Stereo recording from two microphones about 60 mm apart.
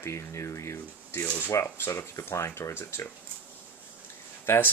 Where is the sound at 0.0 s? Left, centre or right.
Left.